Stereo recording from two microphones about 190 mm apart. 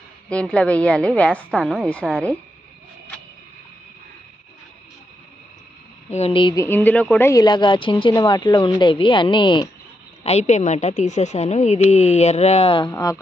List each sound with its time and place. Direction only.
0.3 s a woman's voice: 5° left (ahead or behind)
6.0 s speech: 35° left (ahead or behind)
10.2 s a woman's voice: 35° left (ahead or behind)
12.9 s speech: 15° left (ahead or behind)